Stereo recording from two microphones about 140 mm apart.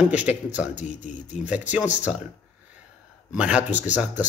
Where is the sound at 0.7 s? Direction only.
60° left (ahead or behind).